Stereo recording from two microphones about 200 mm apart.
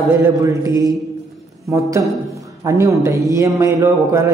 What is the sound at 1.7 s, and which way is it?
Speech, 15° right (ahead or behind).